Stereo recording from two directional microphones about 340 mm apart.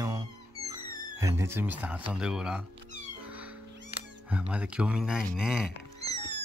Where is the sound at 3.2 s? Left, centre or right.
Centre.